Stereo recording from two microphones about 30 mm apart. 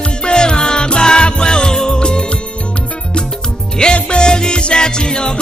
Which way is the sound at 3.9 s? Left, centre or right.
Left.